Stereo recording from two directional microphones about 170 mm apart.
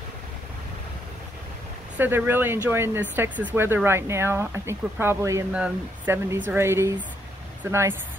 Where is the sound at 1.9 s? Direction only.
10° right (ahead or behind).